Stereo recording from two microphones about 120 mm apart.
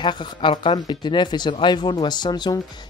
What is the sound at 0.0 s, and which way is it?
Speech, 40° left (ahead or behind).